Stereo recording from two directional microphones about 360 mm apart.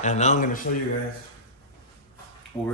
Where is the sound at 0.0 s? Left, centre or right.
Centre.